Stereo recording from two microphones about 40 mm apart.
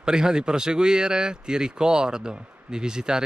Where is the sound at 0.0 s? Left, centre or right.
Centre.